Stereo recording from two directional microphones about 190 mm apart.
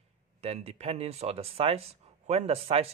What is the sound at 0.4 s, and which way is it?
Speech, 35° right (ahead or behind).